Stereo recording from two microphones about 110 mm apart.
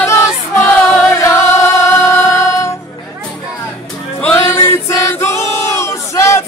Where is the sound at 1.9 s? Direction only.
20° left (ahead or behind).